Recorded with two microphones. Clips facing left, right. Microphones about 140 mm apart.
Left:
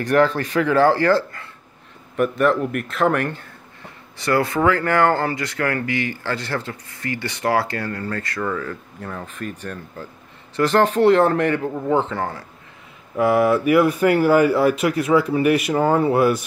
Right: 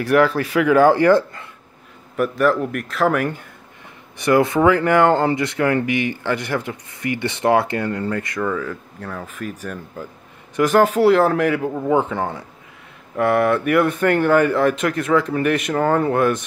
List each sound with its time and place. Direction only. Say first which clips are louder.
0.0 s speech: right 1 dB; 5° right (ahead or behind)
2.1 s speech: even; centre (ahead or behind)
4.2 s speech: right 4 dB; 20° right (ahead or behind)
8.4 s speech: right 2 dB; 5° right (ahead or behind)
13.1 s speech: even; centre (ahead or behind)